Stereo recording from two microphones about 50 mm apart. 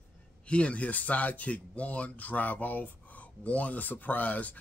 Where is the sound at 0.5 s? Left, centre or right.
Left.